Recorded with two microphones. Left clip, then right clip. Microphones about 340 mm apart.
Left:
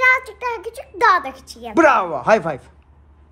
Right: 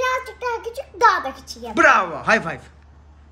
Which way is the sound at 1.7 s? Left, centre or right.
Centre.